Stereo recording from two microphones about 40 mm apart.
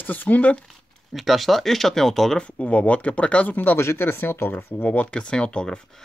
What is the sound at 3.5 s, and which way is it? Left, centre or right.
Speech, left.